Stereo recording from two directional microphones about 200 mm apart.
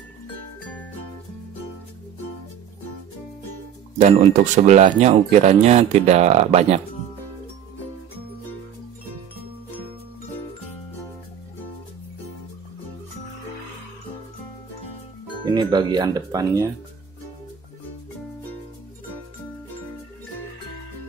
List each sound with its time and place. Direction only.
4.0 s speech: 35° right (ahead or behind)
15.4 s speech: 20° right (ahead or behind)